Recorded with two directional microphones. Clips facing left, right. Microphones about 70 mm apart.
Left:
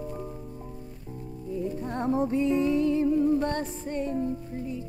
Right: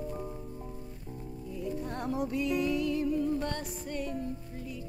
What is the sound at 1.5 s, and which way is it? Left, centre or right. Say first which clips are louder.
Music: left 5 dB; left.